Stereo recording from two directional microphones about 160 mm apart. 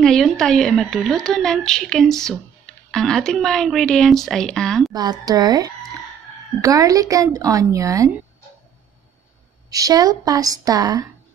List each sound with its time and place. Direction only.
0.0 s speech: 5° left (ahead or behind)
4.9 s speech: 25° right (ahead or behind)
9.7 s speech: 20° right (ahead or behind)